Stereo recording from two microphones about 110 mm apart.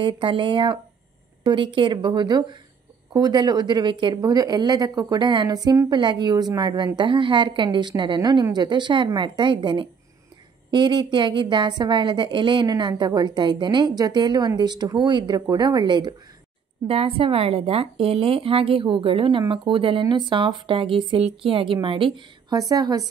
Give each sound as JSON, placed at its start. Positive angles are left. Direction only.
{"t": 0.0, "sound": "a woman's voice", "side_deg": -50}
{"t": 16.8, "sound": "a woman's voice", "side_deg": -60}
{"t": 22.5, "sound": "speech", "side_deg": -35}